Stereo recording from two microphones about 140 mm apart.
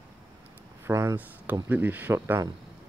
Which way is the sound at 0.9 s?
20° right (ahead or behind).